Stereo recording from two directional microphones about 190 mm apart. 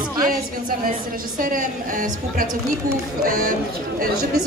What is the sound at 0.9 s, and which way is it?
A woman's voice, 45° right (ahead or behind).